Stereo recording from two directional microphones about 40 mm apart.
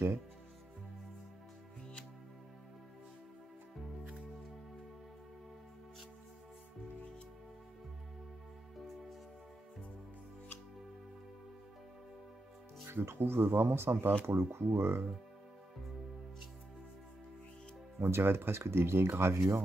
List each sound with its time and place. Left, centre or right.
12.8 s speech: right
14.2 s speech: right
17.9 s speech: right